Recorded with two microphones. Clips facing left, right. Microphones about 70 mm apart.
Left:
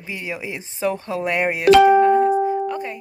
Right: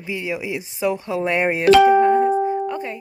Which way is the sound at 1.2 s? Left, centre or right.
Centre.